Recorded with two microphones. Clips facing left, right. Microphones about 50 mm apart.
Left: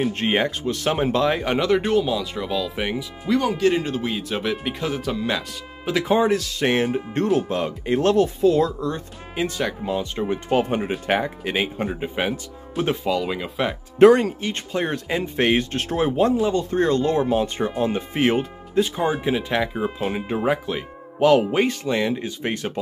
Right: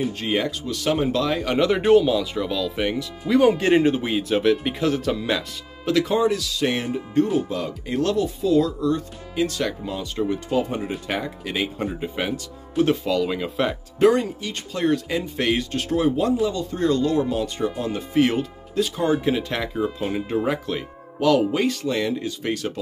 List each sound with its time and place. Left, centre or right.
0.0 s speech: left
1.6 s speech: centre
3.4 s speech: right
4.0 s speech: centre
6.0 s speech: left
7.2 s speech: left
10.5 s speech: left
13.0 s speech: centre
13.9 s speech: left
14.4 s speech: left
19.2 s speech: centre
19.7 s speech: left
21.2 s speech: left